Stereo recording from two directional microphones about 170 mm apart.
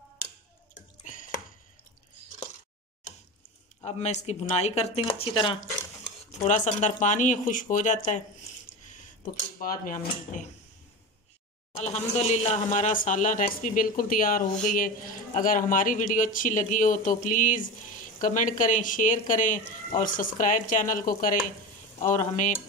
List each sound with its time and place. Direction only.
3.8 s speech: 40° left (ahead or behind)
6.4 s speech: 45° left (ahead or behind)
11.8 s speech: 40° left (ahead or behind); by 14.4 s 55° left (ahead or behind)
15.4 s speech: 50° left (ahead or behind)